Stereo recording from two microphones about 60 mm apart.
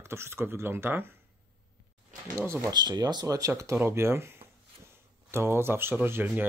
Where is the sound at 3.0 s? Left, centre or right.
Right.